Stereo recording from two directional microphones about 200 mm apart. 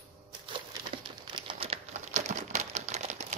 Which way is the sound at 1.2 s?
25° right (ahead or behind).